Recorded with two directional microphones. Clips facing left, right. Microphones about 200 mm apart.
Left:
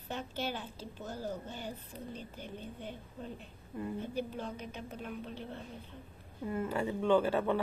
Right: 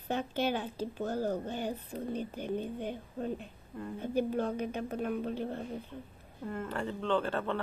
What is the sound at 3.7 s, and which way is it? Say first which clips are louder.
Speech: left 2 dB; 5° left (ahead or behind).